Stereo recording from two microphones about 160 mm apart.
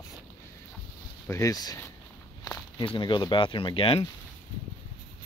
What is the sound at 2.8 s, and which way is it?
Speech, 30° left (ahead or behind).